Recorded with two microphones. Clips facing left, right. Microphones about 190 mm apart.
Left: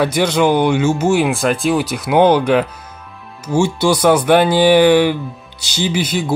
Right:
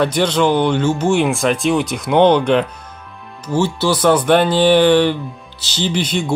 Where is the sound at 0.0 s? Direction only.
10° left (ahead or behind).